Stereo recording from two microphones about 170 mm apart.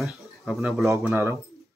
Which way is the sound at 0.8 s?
15° right (ahead or behind).